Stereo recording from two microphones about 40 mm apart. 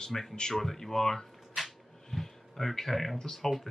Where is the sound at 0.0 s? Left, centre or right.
Centre.